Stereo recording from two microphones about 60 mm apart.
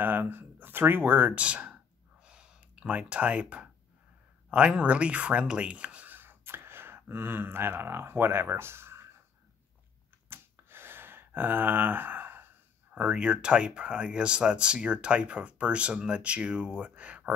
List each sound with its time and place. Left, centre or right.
0.0 s speech: right
1.3 s speech: centre
2.2 s gasp: centre
4.5 s speech: centre
6.1 s speech: right
10.3 s a sound: right
12.9 s speech: centre